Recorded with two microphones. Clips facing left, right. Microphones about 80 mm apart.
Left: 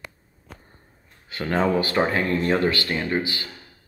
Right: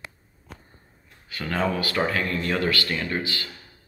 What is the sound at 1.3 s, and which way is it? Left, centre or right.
Speech, left.